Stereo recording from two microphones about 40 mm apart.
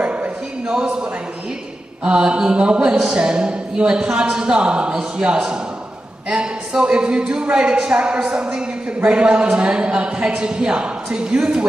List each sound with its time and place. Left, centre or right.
0.0 s a sound: right
2.0 s a woman's voice: right
6.7 s a woman's voice: right